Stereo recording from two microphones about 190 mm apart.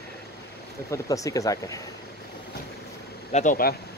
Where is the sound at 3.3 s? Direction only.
40° left (ahead or behind).